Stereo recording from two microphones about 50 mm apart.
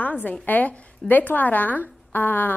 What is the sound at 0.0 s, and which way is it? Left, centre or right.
A woman's voice, left.